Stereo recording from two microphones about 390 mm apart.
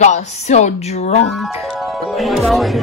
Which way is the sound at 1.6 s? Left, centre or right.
Centre.